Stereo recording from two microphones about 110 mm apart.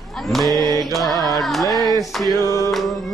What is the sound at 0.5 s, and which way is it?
Mantra, 35° right (ahead or behind).